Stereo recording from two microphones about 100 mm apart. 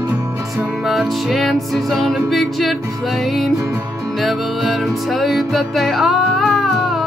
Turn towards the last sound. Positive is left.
turn(degrees=0)  # may be behind; listen again after turning